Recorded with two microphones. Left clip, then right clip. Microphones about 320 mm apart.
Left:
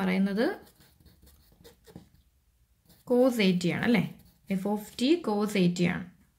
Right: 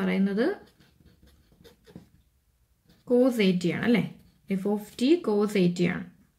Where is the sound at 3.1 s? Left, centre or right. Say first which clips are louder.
Right 1 dB; centre.